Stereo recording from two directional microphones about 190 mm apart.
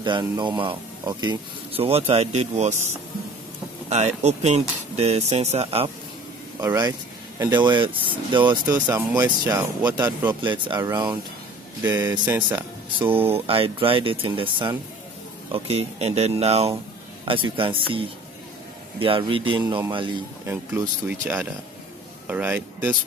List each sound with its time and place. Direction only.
0.0 s speech: 25° right (ahead or behind)
3.9 s speech: 35° right (ahead or behind)
6.6 s speech: 15° right (ahead or behind)
8.8 s speech: 10° right (ahead or behind)
13.3 s speech: 30° right (ahead or behind)
20.4 s speech: 10° right (ahead or behind)